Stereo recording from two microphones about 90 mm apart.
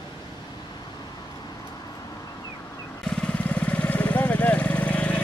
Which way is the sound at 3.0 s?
10° left (ahead or behind).